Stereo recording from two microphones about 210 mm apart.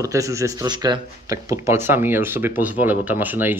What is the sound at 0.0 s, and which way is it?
Speech, 15° right (ahead or behind).